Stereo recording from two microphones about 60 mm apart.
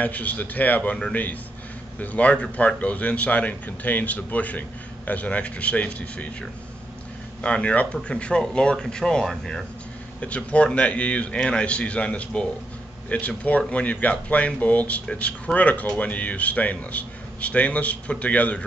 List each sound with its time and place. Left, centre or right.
0.0 s a man's voice: left
2.0 s a man's voice: left
7.4 s speech: left
9.2 s speech: centre
10.2 s a man's voice: left